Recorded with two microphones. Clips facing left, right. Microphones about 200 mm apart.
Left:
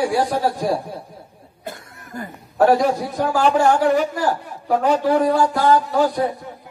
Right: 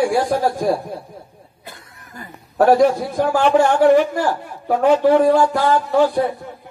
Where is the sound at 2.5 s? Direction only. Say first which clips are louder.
Right 1 dB; 45° right (ahead or behind).